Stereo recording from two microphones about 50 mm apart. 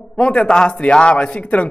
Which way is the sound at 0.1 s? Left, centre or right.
Left.